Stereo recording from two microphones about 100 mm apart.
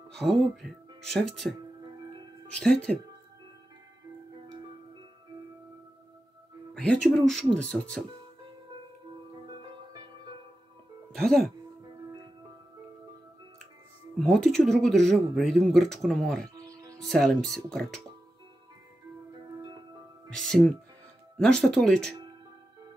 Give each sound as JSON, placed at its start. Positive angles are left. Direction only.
{"t": 0.1, "sound": "speech", "side_deg": 0}
{"t": 2.6, "sound": "speech", "side_deg": 5}
{"t": 6.7, "sound": "music", "side_deg": 5}
{"t": 7.2, "sound": "speech", "side_deg": 5}
{"t": 11.1, "sound": "speech", "side_deg": 5}
{"t": 14.1, "sound": "speech", "side_deg": 5}
{"t": 16.5, "sound": "music", "side_deg": -35}
{"t": 17.0, "sound": "speech", "side_deg": 5}
{"t": 20.2, "sound": "speech", "side_deg": 5}